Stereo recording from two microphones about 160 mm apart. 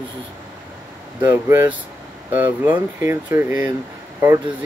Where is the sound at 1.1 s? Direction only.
15° right (ahead or behind).